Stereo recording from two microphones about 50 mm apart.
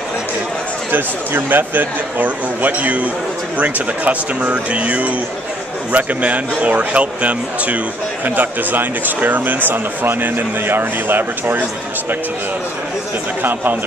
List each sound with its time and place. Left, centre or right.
0.9 s speech: right
8.4 s speech: right
13.4 s speech: right